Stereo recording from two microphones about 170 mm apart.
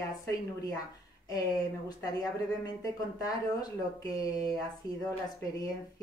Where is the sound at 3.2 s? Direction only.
20° left (ahead or behind).